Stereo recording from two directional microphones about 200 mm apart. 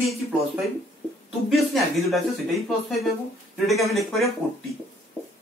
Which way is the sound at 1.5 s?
Centre (ahead or behind).